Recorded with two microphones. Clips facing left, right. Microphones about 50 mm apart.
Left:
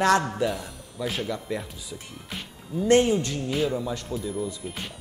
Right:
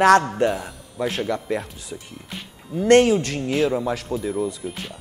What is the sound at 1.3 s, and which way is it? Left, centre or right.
Speech, right.